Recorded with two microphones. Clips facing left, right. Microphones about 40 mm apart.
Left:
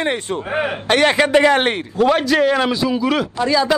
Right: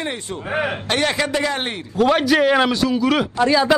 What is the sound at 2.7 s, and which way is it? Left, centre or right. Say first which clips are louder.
Speech: even; centre.